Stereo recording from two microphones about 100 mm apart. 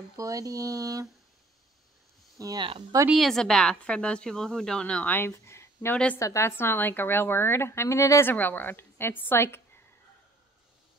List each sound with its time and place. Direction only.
0.2 s speech: 35° right (ahead or behind)
2.3 s speech: 35° right (ahead or behind)
3.2 s a woman's voice: 5° left (ahead or behind); by 9.6 s 25° left (ahead or behind)